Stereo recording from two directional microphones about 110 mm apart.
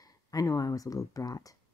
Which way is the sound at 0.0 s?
35° left (ahead or behind).